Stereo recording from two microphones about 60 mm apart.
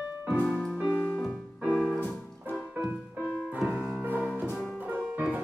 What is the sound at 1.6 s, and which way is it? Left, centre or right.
Piano, centre.